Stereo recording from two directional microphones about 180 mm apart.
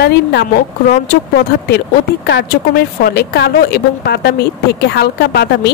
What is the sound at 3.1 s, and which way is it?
A woman's voice, 65° left (ahead or behind).